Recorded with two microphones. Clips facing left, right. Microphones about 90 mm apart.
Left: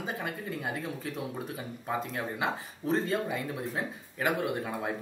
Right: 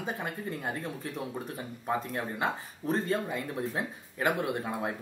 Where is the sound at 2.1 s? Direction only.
Centre (ahead or behind).